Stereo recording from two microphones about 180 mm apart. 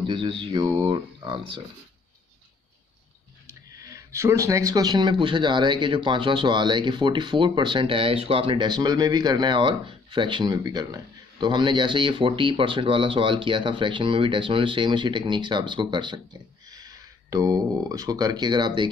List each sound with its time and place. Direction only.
0.0 s speech: 25° right (ahead or behind)
3.4 s speech: 15° right (ahead or behind)